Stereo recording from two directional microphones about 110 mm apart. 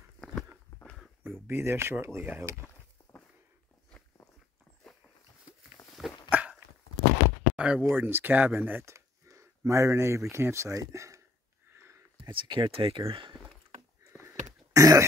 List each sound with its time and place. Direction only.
1.5 s speech: 25° right (ahead or behind)
6.0 s dog: 5° right (ahead or behind)
7.5 s a sound: 10° right (ahead or behind)
7.8 s speech: 20° right (ahead or behind)
11.7 s a sound: 25° right (ahead or behind)
12.2 s speech: 50° right (ahead or behind)
14.2 s throat clearing: 30° right (ahead or behind)